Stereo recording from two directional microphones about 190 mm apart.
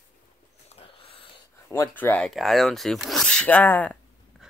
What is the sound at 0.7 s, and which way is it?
Dog, 30° left (ahead or behind).